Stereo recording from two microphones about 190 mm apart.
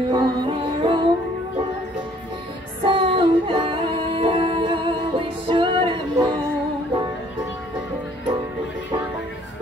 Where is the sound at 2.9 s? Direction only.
25° right (ahead or behind).